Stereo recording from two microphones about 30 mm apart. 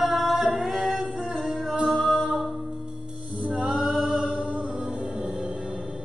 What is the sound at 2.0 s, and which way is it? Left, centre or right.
Mantra, centre.